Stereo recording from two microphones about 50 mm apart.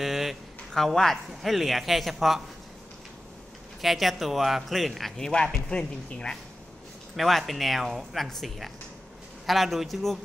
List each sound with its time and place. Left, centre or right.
0.0 s a sound: centre
0.7 s speech: centre
3.8 s speech: centre
5.3 s speech: centre
7.2 s speech: centre